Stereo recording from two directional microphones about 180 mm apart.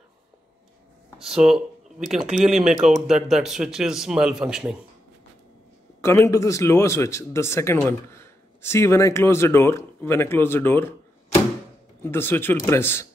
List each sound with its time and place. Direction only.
1.1 s speech: 5° right (ahead or behind)
5.9 s speech: 15° left (ahead or behind)
12.0 s speech: 10° left (ahead or behind)